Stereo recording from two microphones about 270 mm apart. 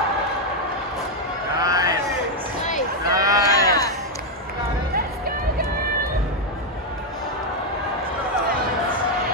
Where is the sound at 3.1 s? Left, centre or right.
Centre.